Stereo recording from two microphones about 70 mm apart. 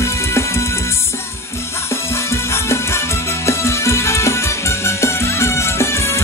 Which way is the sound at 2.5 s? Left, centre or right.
Left.